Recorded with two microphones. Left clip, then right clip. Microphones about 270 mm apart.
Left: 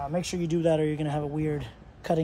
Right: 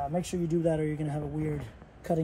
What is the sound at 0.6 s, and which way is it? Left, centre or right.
Speech, left.